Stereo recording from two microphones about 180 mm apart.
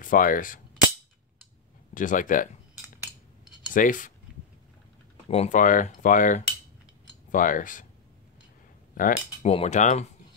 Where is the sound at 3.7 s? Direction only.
45° left (ahead or behind).